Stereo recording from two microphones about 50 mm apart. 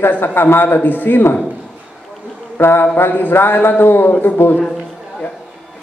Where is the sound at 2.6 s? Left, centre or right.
Left.